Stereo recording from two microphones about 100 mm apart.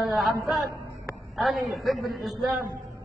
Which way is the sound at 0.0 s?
Centre (ahead or behind).